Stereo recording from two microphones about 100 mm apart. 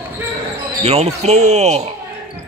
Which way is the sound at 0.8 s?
90° right.